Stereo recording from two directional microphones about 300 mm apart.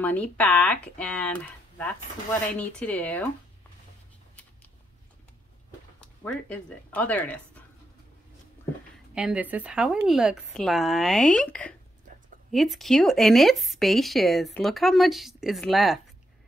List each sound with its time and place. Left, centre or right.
0.0 s speech: centre
5.9 s speech: centre
9.1 s speech: centre